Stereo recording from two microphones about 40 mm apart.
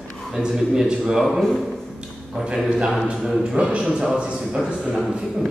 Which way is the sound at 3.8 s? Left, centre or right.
Centre.